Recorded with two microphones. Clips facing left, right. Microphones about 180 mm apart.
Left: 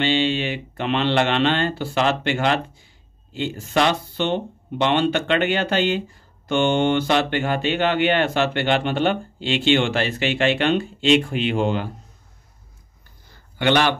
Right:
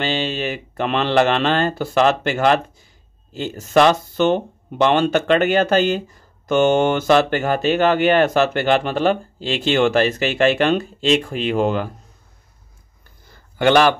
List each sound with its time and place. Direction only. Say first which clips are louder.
0.0 s speech: left 2 dB; 40° right (ahead or behind)